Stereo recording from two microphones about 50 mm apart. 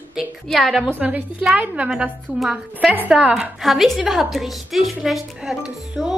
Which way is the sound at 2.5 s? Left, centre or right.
Right.